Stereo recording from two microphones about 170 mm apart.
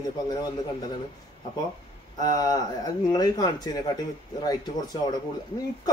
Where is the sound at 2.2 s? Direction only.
20° left (ahead or behind).